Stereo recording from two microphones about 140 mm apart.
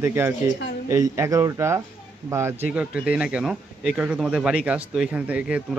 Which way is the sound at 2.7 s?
10° right (ahead or behind).